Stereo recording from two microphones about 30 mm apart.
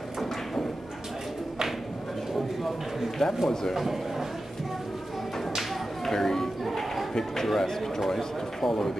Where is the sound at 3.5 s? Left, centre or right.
Centre.